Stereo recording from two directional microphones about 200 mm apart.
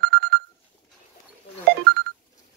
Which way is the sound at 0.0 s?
50° right (ahead or behind).